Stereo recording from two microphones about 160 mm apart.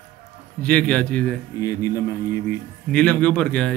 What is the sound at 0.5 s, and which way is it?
Speech, 5° left (ahead or behind).